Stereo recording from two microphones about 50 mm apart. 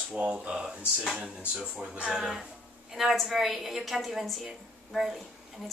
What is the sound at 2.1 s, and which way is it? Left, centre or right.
A woman's voice, centre.